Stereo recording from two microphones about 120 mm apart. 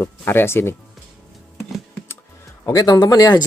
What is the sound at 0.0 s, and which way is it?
Speech, 20° left (ahead or behind).